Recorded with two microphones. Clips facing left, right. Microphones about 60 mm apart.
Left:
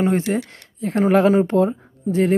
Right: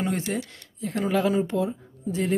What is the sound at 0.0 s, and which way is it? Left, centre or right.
Speech, left.